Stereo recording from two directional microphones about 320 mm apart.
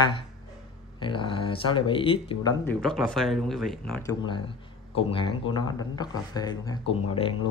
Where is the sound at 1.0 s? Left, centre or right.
Centre.